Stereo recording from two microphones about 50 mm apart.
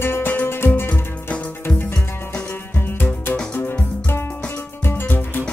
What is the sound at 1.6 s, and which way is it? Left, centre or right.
Music, left.